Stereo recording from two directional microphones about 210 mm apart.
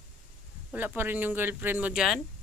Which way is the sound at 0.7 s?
10° right (ahead or behind).